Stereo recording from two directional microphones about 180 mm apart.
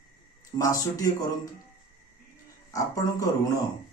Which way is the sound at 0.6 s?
20° left (ahead or behind).